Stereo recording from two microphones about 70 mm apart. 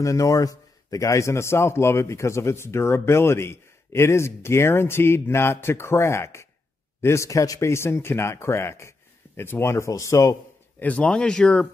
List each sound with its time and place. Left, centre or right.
0.0 s a man's voice: left
10.8 s speech: centre